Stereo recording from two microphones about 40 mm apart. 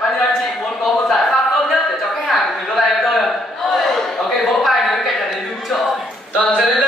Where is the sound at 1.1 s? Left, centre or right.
Centre.